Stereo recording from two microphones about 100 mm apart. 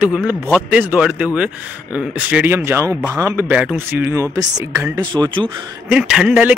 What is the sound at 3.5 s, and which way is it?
Speech, 10° right (ahead or behind).